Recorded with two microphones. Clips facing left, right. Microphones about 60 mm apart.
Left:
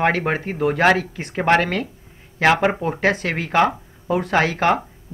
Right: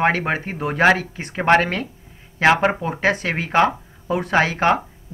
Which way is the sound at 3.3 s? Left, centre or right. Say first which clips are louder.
Even; right.